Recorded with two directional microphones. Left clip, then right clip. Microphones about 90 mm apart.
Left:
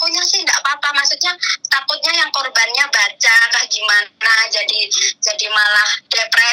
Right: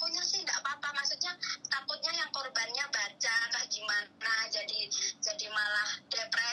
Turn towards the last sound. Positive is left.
turn(degrees=25)  # may be behind; listen again after turning